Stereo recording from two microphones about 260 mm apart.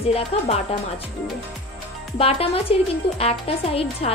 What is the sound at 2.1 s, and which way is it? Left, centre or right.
Speech, left.